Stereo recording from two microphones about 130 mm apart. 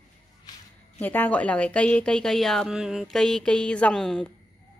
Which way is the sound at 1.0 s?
10° left (ahead or behind).